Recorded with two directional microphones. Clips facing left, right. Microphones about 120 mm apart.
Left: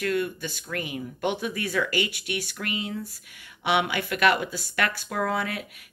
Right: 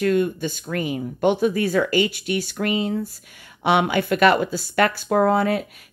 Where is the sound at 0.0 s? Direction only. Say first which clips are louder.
Right 7 dB; 30° right (ahead or behind).